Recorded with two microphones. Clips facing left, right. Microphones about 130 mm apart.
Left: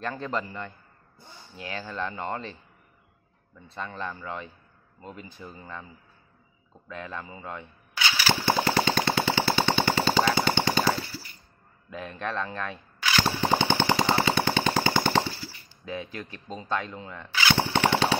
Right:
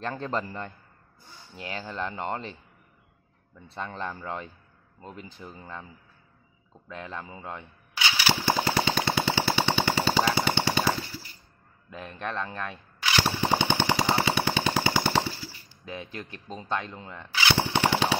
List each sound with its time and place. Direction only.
0.2 s speech: 30° right (ahead or behind)
3.7 s speech: 25° right (ahead or behind)
6.9 s speech: 20° right (ahead or behind)
7.4 s a sound: 20° right (ahead or behind)
8.6 s machine gun: 10° right (ahead or behind)
11.9 s speech: 20° right (ahead or behind)
13.2 s machine gun: 10° right (ahead or behind)
16.6 s speech: 20° right (ahead or behind)
17.1 s machine gun: 20° right (ahead or behind)